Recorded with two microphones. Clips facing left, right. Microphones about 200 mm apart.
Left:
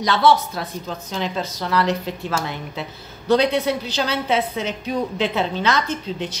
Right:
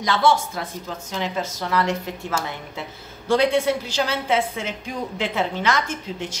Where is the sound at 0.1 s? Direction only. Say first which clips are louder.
Left 2 dB; 65° left (ahead or behind).